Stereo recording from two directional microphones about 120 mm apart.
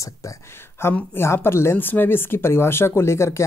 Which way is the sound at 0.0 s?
25° left (ahead or behind).